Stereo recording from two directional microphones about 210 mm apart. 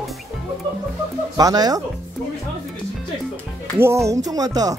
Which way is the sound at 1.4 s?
20° right (ahead or behind).